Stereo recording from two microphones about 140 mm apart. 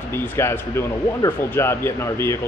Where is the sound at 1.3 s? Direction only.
15° left (ahead or behind).